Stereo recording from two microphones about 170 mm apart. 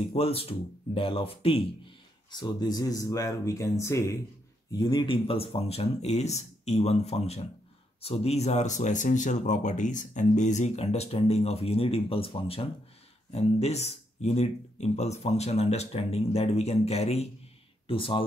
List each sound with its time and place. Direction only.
0.1 s speech: 35° left (ahead or behind)